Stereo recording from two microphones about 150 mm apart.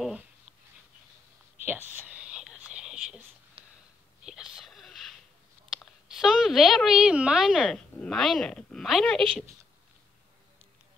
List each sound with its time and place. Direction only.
1.6 s whispering: 15° right (ahead or behind)
3.6 s a sound: 40° right (ahead or behind)
4.2 s whispering: 5° right (ahead or behind)
5.7 s a woman's voice: centre (ahead or behind)